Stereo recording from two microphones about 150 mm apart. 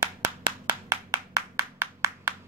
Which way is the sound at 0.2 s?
25° right (ahead or behind).